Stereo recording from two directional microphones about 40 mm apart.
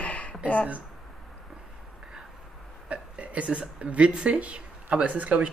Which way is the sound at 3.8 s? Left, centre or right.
Right.